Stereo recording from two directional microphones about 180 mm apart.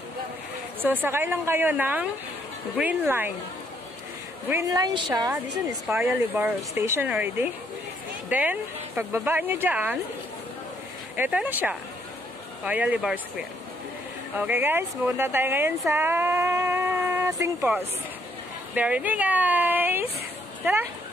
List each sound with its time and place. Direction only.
1.0 s speech: 10° right (ahead or behind)
4.5 s a woman's voice: 20° right (ahead or behind)
5.9 s speech: 15° right (ahead or behind)
11.1 s speech: 10° right (ahead or behind)
15.9 s a sound: 10° right (ahead or behind)
18.8 s speech: 10° right (ahead or behind)